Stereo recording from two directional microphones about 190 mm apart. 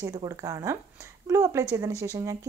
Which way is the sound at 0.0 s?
20° right (ahead or behind).